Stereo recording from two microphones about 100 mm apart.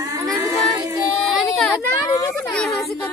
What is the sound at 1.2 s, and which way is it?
Child singing, 5° left (ahead or behind).